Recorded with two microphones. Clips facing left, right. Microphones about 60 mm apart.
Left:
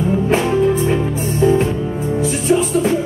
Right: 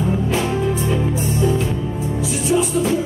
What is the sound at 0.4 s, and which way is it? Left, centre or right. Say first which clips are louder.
Music: left 5 dB; left.